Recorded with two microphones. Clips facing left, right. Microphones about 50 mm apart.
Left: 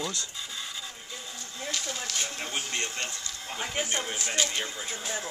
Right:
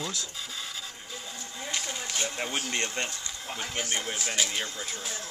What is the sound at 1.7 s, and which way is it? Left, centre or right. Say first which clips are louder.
Speech: even; centre.